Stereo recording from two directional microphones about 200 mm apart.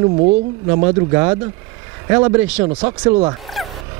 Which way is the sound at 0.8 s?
15° right (ahead or behind).